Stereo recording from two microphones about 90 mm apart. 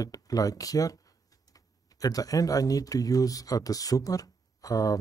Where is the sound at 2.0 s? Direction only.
40° left (ahead or behind).